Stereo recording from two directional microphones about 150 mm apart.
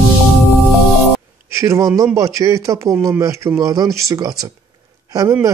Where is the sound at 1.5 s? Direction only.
20° right (ahead or behind).